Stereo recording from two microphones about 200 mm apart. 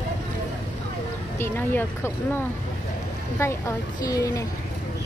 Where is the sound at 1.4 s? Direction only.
10° left (ahead or behind).